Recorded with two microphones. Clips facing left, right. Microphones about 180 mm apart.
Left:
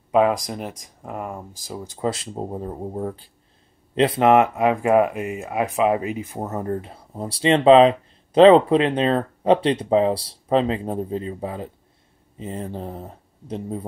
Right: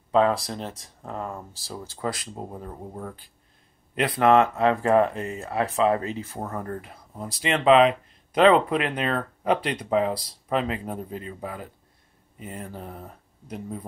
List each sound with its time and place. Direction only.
0.1 s speech: 15° left (ahead or behind)